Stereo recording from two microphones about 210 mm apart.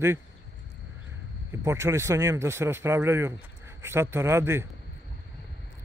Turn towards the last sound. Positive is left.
turn(degrees=-10)  # may be behind; listen again after turning